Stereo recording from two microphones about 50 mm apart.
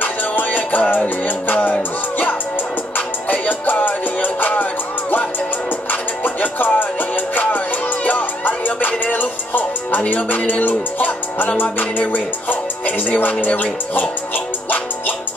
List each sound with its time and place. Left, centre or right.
0.0 s music: left
5.9 s music: left